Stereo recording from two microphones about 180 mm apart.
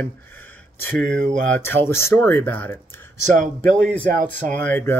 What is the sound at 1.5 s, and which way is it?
Speech, 10° left (ahead or behind).